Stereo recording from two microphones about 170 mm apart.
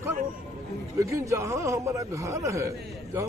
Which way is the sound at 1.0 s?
20° right (ahead or behind).